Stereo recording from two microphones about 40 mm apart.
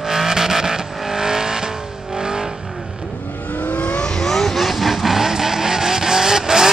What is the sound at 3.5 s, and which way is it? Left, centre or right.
Vehicle, left.